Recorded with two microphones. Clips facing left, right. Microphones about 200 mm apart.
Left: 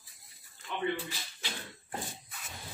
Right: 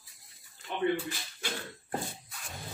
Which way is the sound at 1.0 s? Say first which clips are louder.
Right 5 dB; 50° right (ahead or behind).